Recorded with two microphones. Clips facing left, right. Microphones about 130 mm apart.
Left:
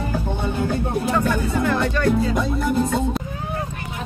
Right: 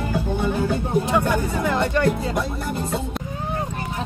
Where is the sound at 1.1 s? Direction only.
15° right (ahead or behind).